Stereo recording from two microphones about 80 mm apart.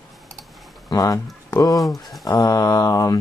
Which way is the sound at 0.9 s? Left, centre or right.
Left.